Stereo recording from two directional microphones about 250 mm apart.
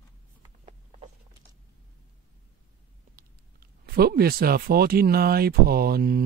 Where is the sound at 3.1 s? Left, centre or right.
Right.